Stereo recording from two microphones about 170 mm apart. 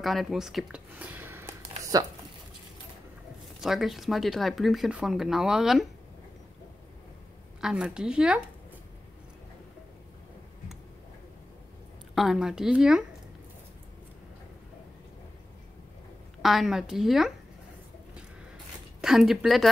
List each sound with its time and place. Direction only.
0.0 s speech: centre (ahead or behind); by 2.1 s 20° right (ahead or behind)
3.6 s speech: centre (ahead or behind)
7.6 s speech: 5° right (ahead or behind)
12.2 s speech: centre (ahead or behind)
16.4 s speech: centre (ahead or behind)
19.0 s speech: centre (ahead or behind)